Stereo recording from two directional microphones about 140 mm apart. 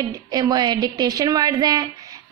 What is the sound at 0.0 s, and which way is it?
A woman's voice, 25° right (ahead or behind).